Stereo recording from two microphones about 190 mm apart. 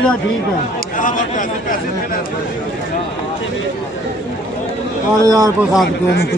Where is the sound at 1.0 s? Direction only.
45° left (ahead or behind).